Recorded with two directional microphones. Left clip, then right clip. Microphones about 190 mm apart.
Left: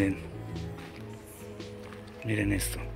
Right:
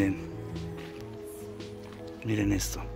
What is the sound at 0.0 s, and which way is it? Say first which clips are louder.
Music: right 1 dB; centre (ahead or behind).